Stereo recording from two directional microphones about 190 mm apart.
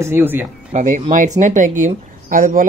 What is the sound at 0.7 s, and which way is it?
Speech, 40° right (ahead or behind).